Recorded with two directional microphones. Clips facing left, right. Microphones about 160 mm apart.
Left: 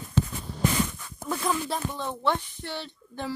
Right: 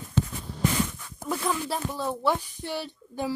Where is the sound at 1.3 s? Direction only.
5° right (ahead or behind).